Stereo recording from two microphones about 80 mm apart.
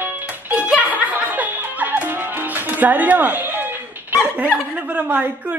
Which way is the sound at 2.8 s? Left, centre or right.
Right.